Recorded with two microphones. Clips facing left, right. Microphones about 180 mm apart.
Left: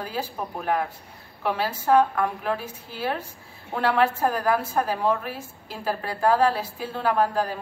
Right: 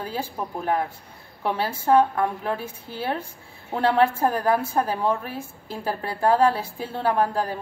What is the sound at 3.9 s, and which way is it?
A woman's voice, 30° right (ahead or behind).